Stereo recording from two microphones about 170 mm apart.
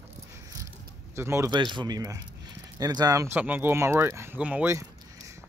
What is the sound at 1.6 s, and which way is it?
Speech, 25° right (ahead or behind).